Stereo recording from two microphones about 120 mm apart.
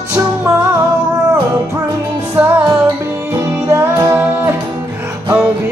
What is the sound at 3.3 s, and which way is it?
Music, 25° right (ahead or behind).